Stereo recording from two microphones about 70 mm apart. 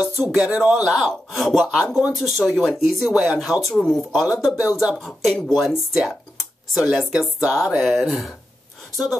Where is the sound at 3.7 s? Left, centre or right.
Centre.